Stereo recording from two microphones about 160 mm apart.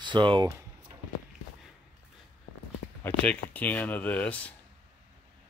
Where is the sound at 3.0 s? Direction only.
10° left (ahead or behind).